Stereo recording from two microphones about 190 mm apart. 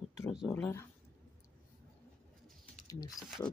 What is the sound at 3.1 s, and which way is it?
Speech, centre (ahead or behind).